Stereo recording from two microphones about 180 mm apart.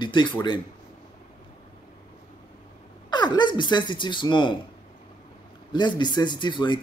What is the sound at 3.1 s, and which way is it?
Speech, 25° left (ahead or behind).